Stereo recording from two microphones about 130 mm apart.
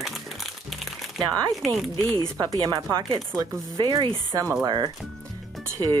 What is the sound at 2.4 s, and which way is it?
Speech, 30° right (ahead or behind).